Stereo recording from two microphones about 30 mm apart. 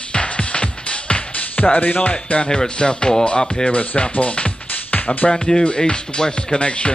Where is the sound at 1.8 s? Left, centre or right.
Left.